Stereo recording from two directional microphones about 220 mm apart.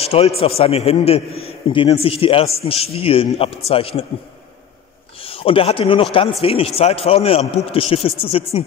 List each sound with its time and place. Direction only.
0.0 s a man's voice: 25° left (ahead or behind)
5.2 s a man's voice: 25° left (ahead or behind)